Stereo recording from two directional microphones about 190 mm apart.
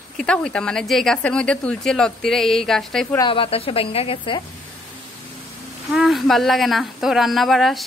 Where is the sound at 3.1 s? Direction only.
25° left (ahead or behind).